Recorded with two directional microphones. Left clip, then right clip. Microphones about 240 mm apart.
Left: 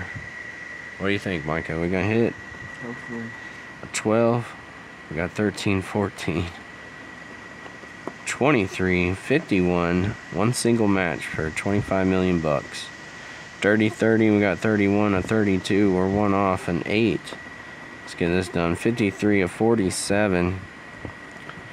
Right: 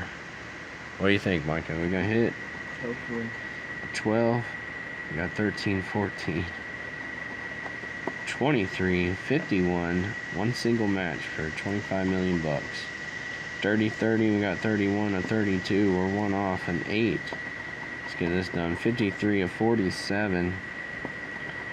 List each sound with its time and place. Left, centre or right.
1.0 s speech: centre
1.5 s speech: left
3.9 s speech: left
8.3 s speech: left
13.6 s speech: left
18.2 s speech: left